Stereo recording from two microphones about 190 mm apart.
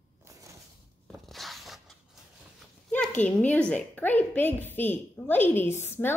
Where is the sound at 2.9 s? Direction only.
10° left (ahead or behind).